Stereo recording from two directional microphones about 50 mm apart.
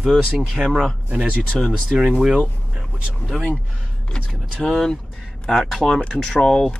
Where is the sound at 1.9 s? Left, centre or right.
Centre.